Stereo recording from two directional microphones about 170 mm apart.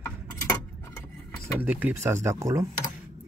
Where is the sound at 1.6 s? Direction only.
10° right (ahead or behind).